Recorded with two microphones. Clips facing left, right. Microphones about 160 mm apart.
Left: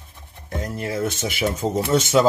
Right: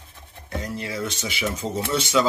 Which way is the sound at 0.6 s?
50° left (ahead or behind).